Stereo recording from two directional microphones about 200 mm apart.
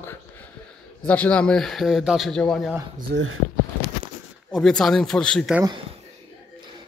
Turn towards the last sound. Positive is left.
turn(degrees=0)  # may be behind; listen again after turning